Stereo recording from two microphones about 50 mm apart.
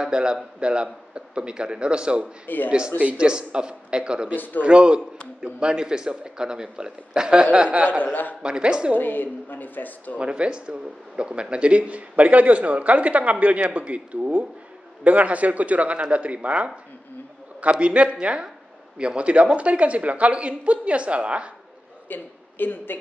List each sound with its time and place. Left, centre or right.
0.0 s speech: centre
2.4 s a woman's voice: left
3.0 s speech: right
8.0 s a woman's voice: left
8.4 s speech: centre
8.9 s a woman's voice: left
10.1 s speech: right
22.1 s speech: left